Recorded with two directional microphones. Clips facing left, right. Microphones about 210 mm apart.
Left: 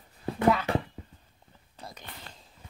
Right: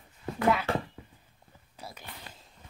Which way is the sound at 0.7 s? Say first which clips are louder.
Left 2 dB; 15° left (ahead or behind).